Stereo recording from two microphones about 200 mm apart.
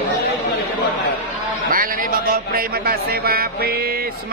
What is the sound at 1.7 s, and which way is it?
A man's voice, 45° right (ahead or behind).